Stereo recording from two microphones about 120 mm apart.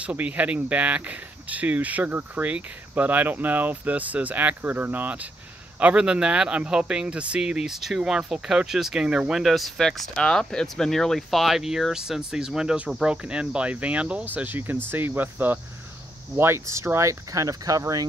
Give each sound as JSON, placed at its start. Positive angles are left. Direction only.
{"t": 0.0, "sound": "speech", "side_deg": -10}